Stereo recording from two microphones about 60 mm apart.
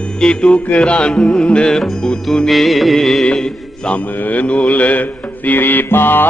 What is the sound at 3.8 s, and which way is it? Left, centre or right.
Music, left.